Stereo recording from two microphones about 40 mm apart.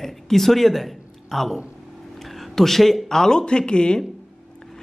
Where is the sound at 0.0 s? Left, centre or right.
Centre.